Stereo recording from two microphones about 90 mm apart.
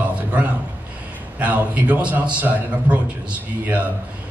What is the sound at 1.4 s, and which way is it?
Speech, 15° right (ahead or behind).